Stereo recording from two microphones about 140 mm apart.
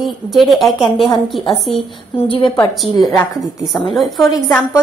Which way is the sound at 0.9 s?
35° left (ahead or behind).